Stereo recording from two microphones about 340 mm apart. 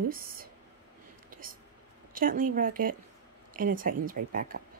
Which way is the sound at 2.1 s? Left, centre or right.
Right.